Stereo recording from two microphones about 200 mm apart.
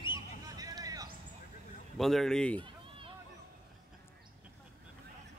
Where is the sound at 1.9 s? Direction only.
Centre (ahead or behind).